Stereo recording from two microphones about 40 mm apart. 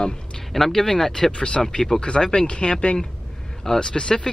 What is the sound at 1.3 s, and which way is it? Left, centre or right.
Speech, left.